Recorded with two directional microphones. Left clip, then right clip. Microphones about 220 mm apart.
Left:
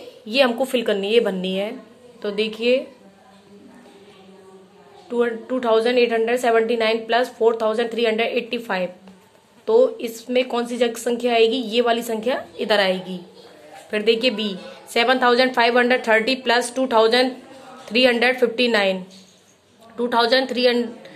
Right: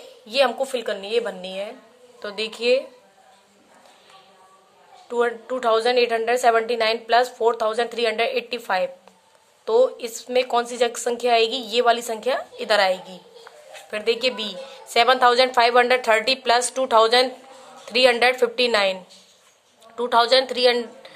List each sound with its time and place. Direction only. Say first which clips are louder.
0.3 s a woman's voice: left 2 dB; 20° right (ahead or behind)
2.2 s a woman's voice: left 2 dB; 25° right (ahead or behind)
5.1 s a woman's voice: left 1 dB; 30° right (ahead or behind)
20.0 s a woman's voice: right 1 dB; 25° right (ahead or behind)